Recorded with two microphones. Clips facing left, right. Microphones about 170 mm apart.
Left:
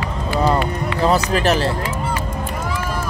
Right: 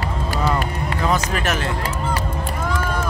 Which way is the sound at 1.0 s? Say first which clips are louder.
Left 5 dB; 35° left (ahead or behind).